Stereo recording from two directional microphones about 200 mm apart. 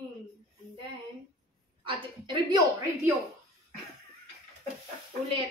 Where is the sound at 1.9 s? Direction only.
20° right (ahead or behind).